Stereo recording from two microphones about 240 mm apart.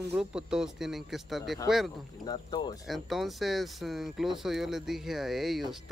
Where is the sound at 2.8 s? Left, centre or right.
Centre.